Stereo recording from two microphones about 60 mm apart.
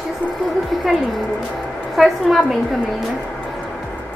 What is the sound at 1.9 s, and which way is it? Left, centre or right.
Speech, centre.